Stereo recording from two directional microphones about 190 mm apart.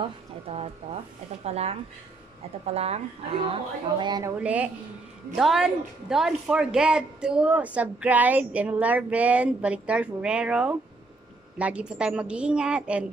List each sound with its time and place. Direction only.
0.0 s speech: 30° right (ahead or behind)
4.0 s a woman's voice: 20° right (ahead or behind)
4.4 s a woman's voice: 10° right (ahead or behind)